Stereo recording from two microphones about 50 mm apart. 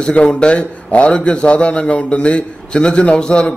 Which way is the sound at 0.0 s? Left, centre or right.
Centre.